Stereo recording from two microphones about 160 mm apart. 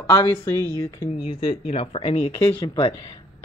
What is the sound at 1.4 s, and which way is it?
Speech, 35° left (ahead or behind).